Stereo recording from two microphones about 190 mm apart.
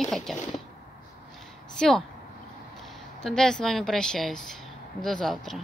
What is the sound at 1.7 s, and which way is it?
Speech, 5° left (ahead or behind).